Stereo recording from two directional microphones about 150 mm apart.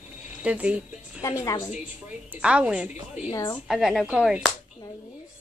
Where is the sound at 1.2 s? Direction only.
15° left (ahead or behind).